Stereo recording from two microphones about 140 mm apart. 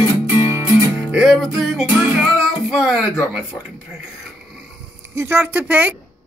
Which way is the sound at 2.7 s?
5° right (ahead or behind).